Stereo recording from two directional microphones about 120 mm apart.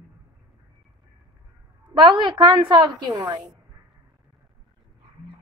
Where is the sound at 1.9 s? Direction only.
40° right (ahead or behind).